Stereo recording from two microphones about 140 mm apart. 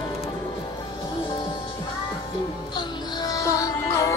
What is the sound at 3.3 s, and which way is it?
Music, 25° left (ahead or behind).